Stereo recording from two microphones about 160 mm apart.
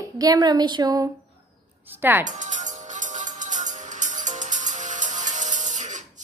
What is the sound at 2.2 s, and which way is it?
Music, 50° right (ahead or behind).